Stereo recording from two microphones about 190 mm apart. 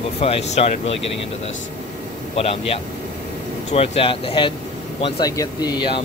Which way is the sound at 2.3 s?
30° left (ahead or behind).